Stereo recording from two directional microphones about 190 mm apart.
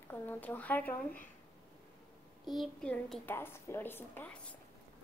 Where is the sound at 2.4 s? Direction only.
Centre (ahead or behind).